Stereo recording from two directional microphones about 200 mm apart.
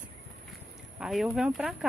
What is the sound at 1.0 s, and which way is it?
Speech, centre (ahead or behind).